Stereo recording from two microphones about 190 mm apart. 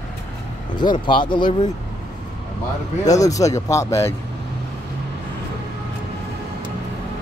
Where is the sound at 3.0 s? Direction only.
20° left (ahead or behind).